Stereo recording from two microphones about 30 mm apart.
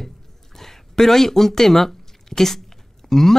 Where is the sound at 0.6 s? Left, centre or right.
Centre.